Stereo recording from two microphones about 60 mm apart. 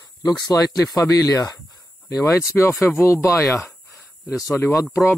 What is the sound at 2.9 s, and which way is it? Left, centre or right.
Speech, left.